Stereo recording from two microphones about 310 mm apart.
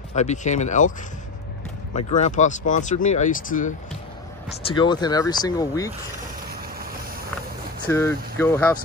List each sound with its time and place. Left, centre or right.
0.1 s speech: left
2.0 s speech: left
6.5 s vehicle: right
7.9 s speech: centre